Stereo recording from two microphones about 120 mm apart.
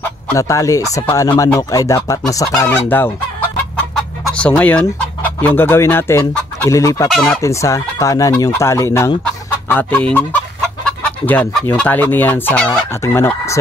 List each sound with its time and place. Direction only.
0.3 s fowl: 25° left (ahead or behind)
2.7 s fowl: 15° left (ahead or behind)
3.9 s chicken: 10° left (ahead or behind)
6.7 s fowl: 25° left (ahead or behind)
9.2 s speech: 15° left (ahead or behind)
11.7 s fowl: 15° left (ahead or behind)
13.0 s fowl: 25° left (ahead or behind)